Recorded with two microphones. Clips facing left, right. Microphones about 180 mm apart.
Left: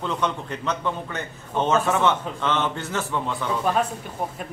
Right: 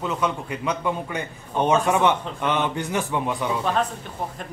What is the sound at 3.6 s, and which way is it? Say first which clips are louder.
Speech: left 2 dB; 5° left (ahead or behind).